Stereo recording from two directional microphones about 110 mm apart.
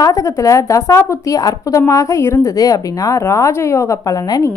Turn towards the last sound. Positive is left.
turn(degrees=35)  # may be behind; listen again after turning